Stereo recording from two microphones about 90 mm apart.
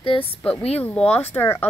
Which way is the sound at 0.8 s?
15° left (ahead or behind).